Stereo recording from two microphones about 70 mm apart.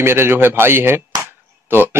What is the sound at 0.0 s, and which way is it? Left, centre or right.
Speech, right.